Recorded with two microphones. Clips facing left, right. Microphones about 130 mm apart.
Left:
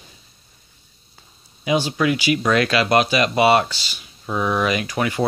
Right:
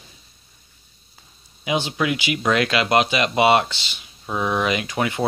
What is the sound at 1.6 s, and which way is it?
Speech, 20° right (ahead or behind).